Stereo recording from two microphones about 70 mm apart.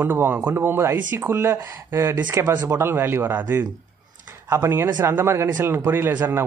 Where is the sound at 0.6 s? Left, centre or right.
Right.